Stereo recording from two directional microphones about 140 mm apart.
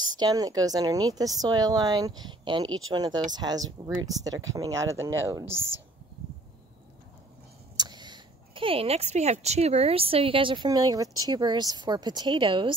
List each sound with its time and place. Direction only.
0.0 s speech: 30° right (ahead or behind)
7.7 s speech: 30° right (ahead or behind)